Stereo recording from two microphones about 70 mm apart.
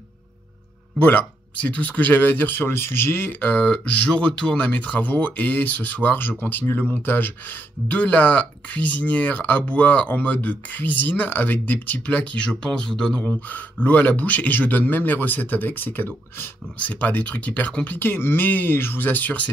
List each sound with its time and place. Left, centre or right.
1.0 s speech: left
3.6 s speech: centre
13.5 s speech: left